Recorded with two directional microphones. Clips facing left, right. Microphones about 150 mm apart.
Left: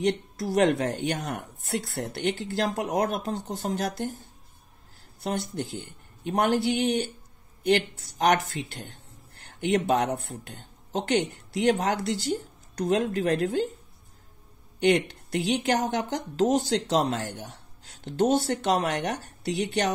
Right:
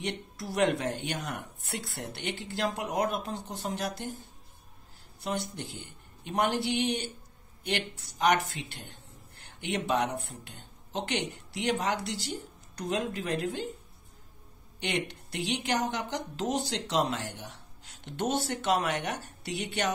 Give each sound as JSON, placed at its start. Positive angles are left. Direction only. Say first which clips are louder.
{"t": 0.0, "sound": "speech", "louder": "left 9 dB", "side_deg": 40}
{"t": 5.2, "sound": "speech", "louder": "left 4 dB", "side_deg": 45}
{"t": 14.8, "sound": "speech", "louder": "left 10 dB", "side_deg": 45}